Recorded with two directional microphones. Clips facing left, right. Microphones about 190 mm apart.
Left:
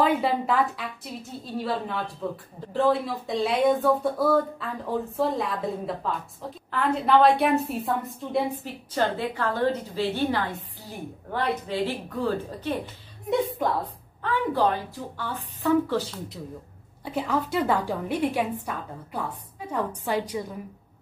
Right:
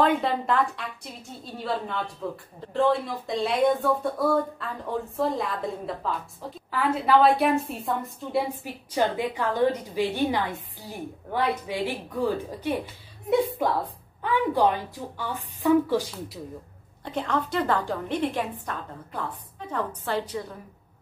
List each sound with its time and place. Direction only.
0.0 s speech: 5° left (ahead or behind)
8.6 s a woman's voice: 15° right (ahead or behind)
14.2 s a woman's voice: 15° right (ahead or behind)
17.0 s a woman's voice: 5° left (ahead or behind)